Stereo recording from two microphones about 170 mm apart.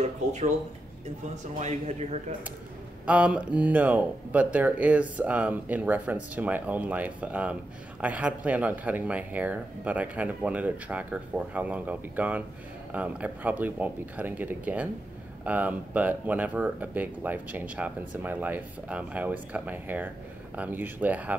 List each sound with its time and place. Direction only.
1.3 s speech: 45° right (ahead or behind)
3.1 s speech: 5° right (ahead or behind)